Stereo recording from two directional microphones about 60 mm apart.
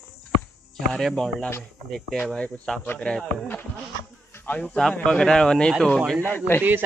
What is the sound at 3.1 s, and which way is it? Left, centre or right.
Speech, centre.